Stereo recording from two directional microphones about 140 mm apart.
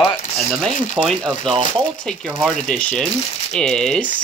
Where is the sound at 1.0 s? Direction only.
Centre (ahead or behind).